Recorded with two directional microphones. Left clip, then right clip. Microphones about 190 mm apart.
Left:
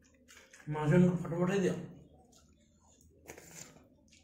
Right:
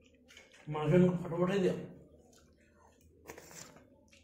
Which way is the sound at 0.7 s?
30° left (ahead or behind).